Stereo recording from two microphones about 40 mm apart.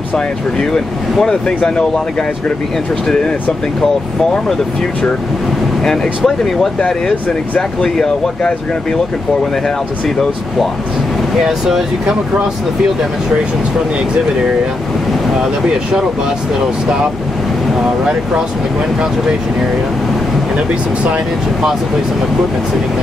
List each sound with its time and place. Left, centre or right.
5.9 s speech: centre
11.4 s speech: centre
15.4 s speech: centre
20.5 s speech: right